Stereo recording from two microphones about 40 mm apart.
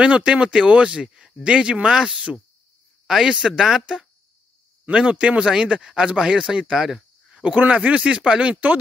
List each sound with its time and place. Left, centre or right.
0.0 s speech: right
1.9 s speech: centre
3.3 s speech: centre
4.9 s speech: right
5.4 s speech: centre
6.7 s a sound: centre
7.4 s speech: right